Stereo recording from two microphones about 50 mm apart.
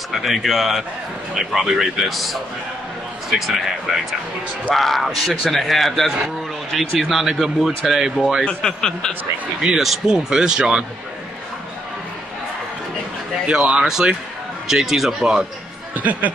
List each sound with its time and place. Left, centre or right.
0.1 s a man's voice: centre
1.3 s a man's voice: centre
1.6 s a man's voice: centre
8.5 s a man's voice: centre
9.6 s speech: centre
13.5 s speech: centre
15.9 s speech: right